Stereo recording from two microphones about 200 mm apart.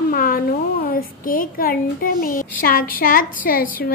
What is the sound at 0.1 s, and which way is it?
A woman's voice, 45° left (ahead or behind).